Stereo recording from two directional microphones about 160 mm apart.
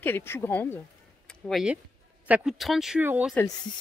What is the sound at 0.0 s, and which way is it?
Speech, 15° left (ahead or behind).